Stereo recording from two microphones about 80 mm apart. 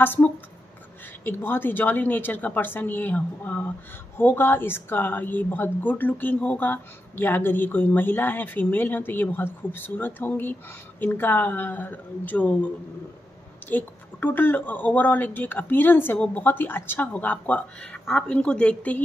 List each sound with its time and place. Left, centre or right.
0.0 s a woman's voice: left